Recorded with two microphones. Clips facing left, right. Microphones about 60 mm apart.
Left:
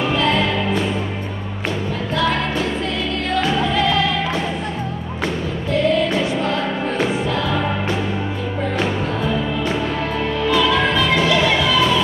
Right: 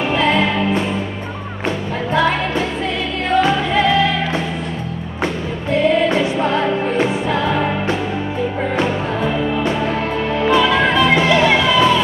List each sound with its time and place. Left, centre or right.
0.1 s music: right
2.1 s music: right
10.4 s music: right